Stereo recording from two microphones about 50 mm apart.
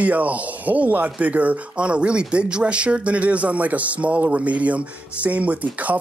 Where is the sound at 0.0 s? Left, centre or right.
Right.